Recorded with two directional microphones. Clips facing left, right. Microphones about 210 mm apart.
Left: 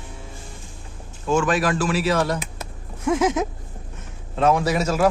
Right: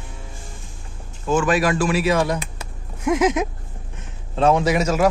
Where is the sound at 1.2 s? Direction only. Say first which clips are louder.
Right 2 dB; 5° right (ahead or behind).